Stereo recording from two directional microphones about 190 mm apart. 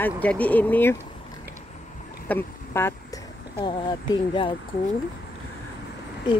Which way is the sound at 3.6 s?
20° left (ahead or behind).